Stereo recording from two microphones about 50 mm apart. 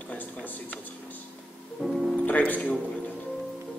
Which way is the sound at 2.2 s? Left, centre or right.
Left.